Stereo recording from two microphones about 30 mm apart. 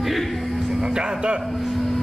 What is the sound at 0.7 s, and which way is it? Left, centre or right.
Music, right.